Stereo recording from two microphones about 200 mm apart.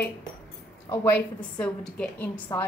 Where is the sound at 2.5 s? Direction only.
15° left (ahead or behind).